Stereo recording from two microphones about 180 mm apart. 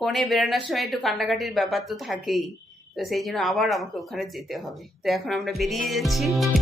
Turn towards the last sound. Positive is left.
turn(degrees=0)  # may be behind; listen again after turning